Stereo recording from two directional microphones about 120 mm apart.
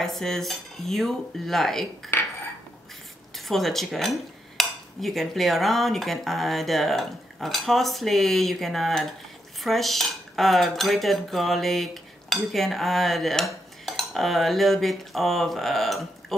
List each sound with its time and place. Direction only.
0.0 s speech: 5° left (ahead or behind)
2.1 s cutlery: 20° left (ahead or behind)
3.3 s speech: centre (ahead or behind)